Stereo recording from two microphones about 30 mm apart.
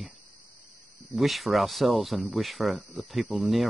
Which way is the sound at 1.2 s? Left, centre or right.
Centre.